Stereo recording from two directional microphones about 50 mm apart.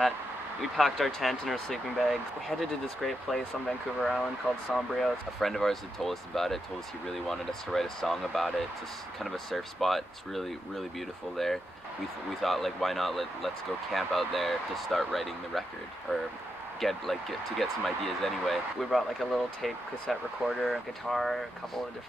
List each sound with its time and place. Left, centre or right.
0.6 s speech: centre
16.8 s speech: centre